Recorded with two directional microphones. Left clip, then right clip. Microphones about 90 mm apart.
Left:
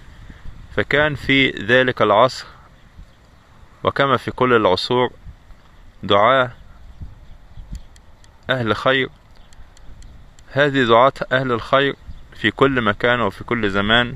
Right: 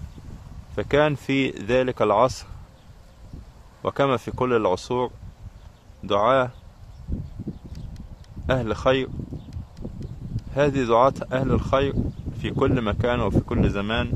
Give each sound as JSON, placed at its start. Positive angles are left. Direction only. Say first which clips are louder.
{"t": 0.7, "sound": "speech", "louder": "left 3 dB", "side_deg": 10}
{"t": 1.1, "sound": "speech", "louder": "left 8 dB", "side_deg": 0}
{"t": 3.8, "sound": "speech", "louder": "left 5 dB", "side_deg": 10}
{"t": 6.0, "sound": "speech", "louder": "left 5 dB", "side_deg": 30}
{"t": 8.5, "sound": "speech", "louder": "left 4 dB", "side_deg": 15}
{"t": 10.5, "sound": "speech", "louder": "left 6 dB", "side_deg": 15}
{"t": 13.5, "sound": "speech", "louder": "left 8 dB", "side_deg": 20}